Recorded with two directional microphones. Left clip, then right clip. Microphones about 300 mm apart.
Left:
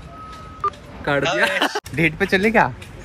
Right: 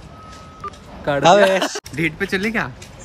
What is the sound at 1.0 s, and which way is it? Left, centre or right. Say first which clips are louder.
Speech: right 6 dB; centre.